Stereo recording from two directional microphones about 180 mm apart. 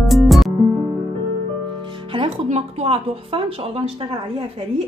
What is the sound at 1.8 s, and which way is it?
Speech, 25° right (ahead or behind).